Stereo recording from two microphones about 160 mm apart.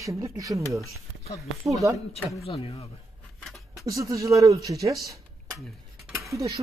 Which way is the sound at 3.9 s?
20° right (ahead or behind).